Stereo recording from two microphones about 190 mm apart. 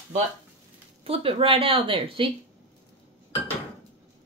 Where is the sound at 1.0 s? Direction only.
30° right (ahead or behind).